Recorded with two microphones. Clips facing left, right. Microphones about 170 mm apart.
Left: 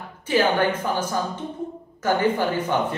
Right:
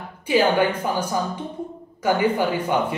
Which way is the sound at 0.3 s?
10° right (ahead or behind).